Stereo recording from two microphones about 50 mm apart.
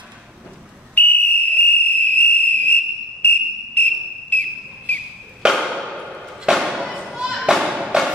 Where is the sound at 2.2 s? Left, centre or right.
Left.